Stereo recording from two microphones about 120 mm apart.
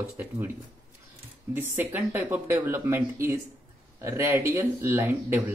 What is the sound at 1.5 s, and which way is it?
Speech, 15° right (ahead or behind).